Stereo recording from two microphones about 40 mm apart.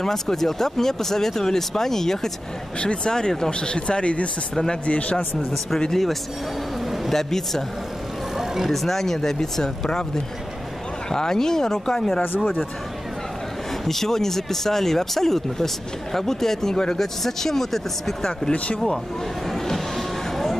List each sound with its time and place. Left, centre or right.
0.0 s speech: centre
2.8 s speech: left
5.9 s speech: centre
8.4 s a sound: centre
8.7 s speech: centre
13.8 s speech: centre